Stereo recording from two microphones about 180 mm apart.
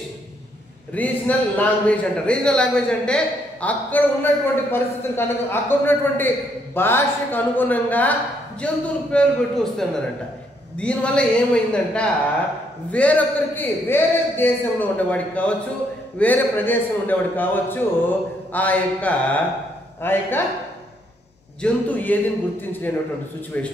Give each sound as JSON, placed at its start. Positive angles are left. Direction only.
{"t": 0.9, "sound": "a man's voice", "side_deg": 10}
{"t": 21.6, "sound": "a man's voice", "side_deg": 10}
{"t": 23.5, "sound": "a man's voice", "side_deg": 10}